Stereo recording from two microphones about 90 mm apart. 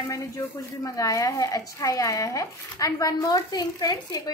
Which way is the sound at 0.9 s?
40° left (ahead or behind).